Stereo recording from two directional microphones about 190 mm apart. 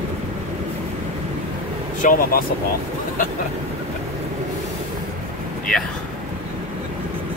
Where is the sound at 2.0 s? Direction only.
45° left (ahead or behind).